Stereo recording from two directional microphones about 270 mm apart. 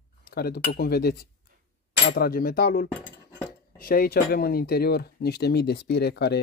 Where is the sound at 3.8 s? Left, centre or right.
Left.